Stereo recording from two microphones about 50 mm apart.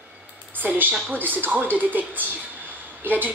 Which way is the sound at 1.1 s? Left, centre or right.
Right.